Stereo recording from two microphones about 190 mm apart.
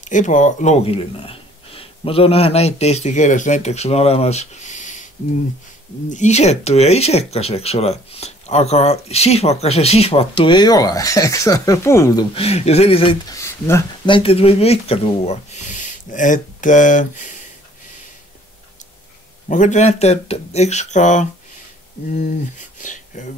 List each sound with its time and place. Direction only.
0.0 s speech: 40° left (ahead or behind)
6.0 s speech: 40° left (ahead or behind); by 12.3 s 15° left (ahead or behind)
12.4 s speech: 35° left (ahead or behind)
13.4 s speech: 15° left (ahead or behind)
14.0 s speech: 30° left (ahead or behind)
19.5 s speech: 40° left (ahead or behind)